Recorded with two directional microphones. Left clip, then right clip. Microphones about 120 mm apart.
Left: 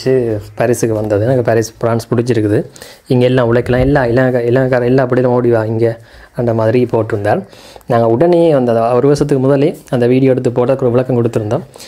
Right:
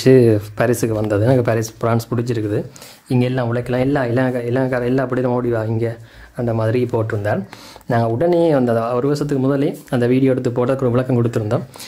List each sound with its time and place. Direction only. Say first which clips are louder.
0.6 s speech: left 4 dB; 10° left (ahead or behind)
2.0 s speech: left 8 dB; 30° left (ahead or behind)